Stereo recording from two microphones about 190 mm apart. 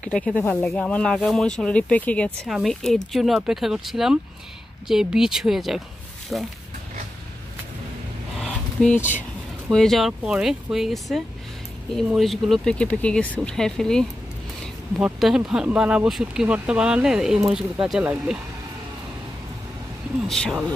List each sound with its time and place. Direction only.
0.1 s speech: 5° left (ahead or behind)
8.8 s speech: 40° left (ahead or behind)
9.7 s speech: centre (ahead or behind)
20.2 s speech: centre (ahead or behind)